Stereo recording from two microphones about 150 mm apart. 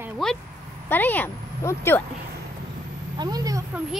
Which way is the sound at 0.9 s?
10° left (ahead or behind).